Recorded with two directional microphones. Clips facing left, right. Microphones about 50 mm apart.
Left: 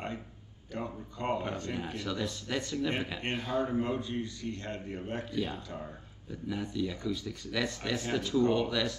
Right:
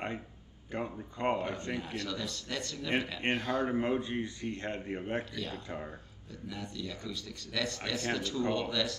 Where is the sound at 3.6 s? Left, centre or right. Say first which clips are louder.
Right 1 dB; right.